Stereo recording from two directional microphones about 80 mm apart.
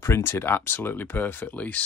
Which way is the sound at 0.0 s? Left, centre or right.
Left.